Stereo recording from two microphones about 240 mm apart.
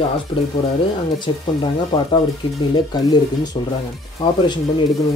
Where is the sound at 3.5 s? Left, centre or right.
Centre.